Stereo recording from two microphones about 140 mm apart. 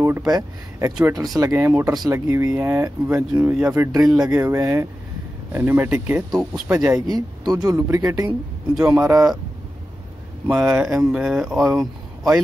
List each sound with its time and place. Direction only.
0.3 s speech: 25° right (ahead or behind)
3.3 s speech: 10° right (ahead or behind)
10.4 s speech: 15° right (ahead or behind)
11.1 s speech: 5° right (ahead or behind)